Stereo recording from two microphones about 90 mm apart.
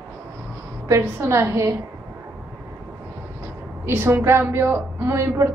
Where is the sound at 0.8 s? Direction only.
30° right (ahead or behind).